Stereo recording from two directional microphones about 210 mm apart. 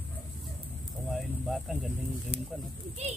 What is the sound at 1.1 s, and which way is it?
Insect, centre (ahead or behind).